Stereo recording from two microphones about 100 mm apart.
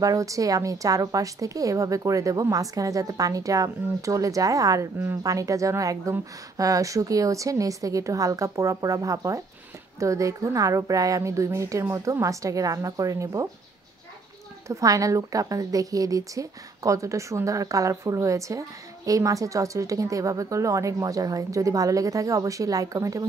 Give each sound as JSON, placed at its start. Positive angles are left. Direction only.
{"t": 0.0, "sound": "a woman's voice", "side_deg": -35}
{"t": 14.7, "sound": "a woman's voice", "side_deg": -35}